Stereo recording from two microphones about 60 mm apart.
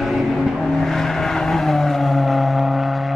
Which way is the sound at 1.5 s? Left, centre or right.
Centre.